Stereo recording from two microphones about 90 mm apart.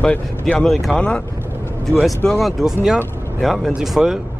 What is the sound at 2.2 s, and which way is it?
Speech, centre (ahead or behind).